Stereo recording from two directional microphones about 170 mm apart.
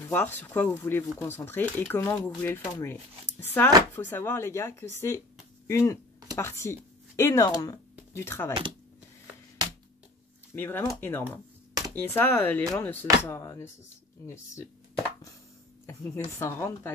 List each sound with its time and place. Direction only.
0.1 s speech: 10° left (ahead or behind)
10.5 s speech: 15° left (ahead or behind)
11.2 s a sound: 20° right (ahead or behind)
12.1 s speech: 15° left (ahead or behind)
15.9 s speech: 15° left (ahead or behind)